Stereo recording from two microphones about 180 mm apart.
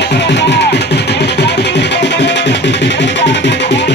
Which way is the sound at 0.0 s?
70° left (ahead or behind).